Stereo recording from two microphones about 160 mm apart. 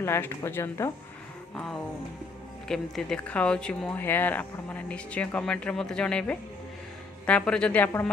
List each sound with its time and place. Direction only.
0.0 s speech: 15° left (ahead or behind)
1.5 s a sound: 5° left (ahead or behind)
2.7 s speech: 5° left (ahead or behind)